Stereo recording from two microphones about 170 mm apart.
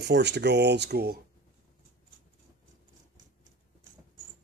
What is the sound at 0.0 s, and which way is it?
Speech, 85° right.